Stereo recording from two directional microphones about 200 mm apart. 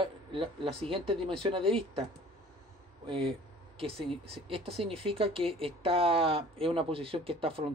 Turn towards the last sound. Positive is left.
turn(degrees=-30)  # may be behind; listen again after turning